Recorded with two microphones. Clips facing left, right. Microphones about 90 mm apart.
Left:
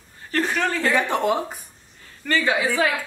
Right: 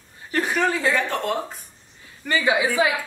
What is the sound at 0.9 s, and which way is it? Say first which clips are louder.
Speech: left 3 dB; 15° left (ahead or behind).